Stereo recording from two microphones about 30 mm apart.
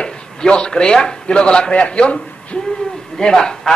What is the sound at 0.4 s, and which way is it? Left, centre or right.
A man's voice, left.